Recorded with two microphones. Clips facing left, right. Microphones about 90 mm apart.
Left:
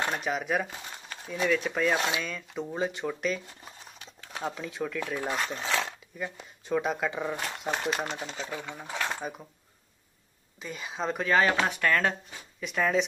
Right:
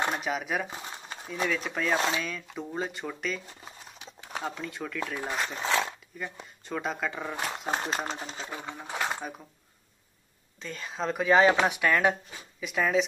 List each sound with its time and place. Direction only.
0.0 s speech: 5° right (ahead or behind)
0.7 s a sound: 20° right (ahead or behind)
1.3 s speech: centre (ahead or behind)
4.0 s a sound: 15° right (ahead or behind)
4.4 s speech: centre (ahead or behind)
7.6 s speech: 25° right (ahead or behind)
8.3 s speech: centre (ahead or behind)
8.9 s a sound: 10° right (ahead or behind)
10.6 s speech: 5° left (ahead or behind)
11.2 s speech: 15° right (ahead or behind)